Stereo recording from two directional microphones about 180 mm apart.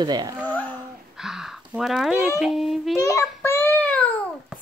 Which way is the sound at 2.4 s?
Centre (ahead or behind).